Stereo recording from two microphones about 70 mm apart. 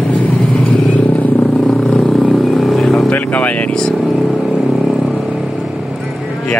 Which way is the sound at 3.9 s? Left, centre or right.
Centre.